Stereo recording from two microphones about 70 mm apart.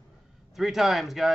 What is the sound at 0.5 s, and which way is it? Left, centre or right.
Speech, centre.